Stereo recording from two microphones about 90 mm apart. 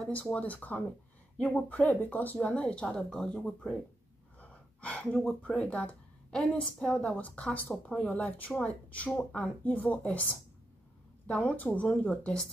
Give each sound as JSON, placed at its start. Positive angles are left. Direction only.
{"t": 0.1, "sound": "speech", "side_deg": 15}